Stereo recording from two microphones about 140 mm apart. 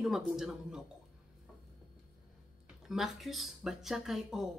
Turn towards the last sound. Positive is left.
turn(degrees=-5)  # may be behind; listen again after turning